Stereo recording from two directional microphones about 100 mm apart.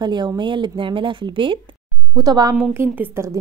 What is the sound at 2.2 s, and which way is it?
Speech, 35° right (ahead or behind).